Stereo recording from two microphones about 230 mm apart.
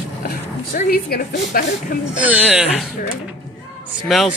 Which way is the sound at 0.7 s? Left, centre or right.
Left.